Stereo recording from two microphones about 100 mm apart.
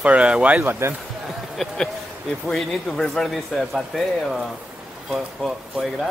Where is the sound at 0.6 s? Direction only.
25° right (ahead or behind).